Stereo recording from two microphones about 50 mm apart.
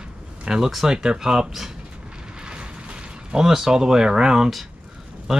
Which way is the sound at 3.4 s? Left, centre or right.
Centre.